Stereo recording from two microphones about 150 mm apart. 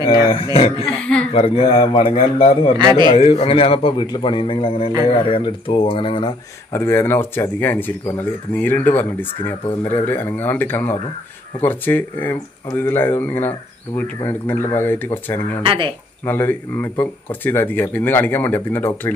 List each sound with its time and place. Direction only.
0.1 s a man's voice: 35° left (ahead or behind)
1.0 s speech: 10° left (ahead or behind)
1.3 s a man's voice: 40° left (ahead or behind)
2.8 s a man's voice: 30° right (ahead or behind)
3.2 s a man's voice: 40° left (ahead or behind)
6.7 s speech: 15° left (ahead or behind)
15.6 s speech: 35° right (ahead or behind)
16.3 s speech: 15° left (ahead or behind)